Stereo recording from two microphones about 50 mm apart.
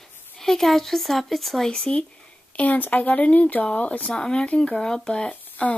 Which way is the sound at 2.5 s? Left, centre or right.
Left.